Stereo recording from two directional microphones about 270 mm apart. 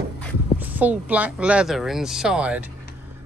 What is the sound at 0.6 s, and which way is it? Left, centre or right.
Speech, centre.